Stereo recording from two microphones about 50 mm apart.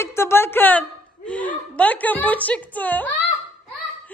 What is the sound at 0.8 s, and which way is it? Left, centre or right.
Chuckle, left.